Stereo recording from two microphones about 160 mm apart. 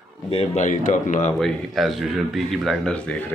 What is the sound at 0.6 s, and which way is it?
Speech, 50° left (ahead or behind).